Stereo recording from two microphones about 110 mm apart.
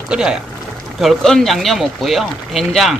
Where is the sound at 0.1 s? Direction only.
5° right (ahead or behind).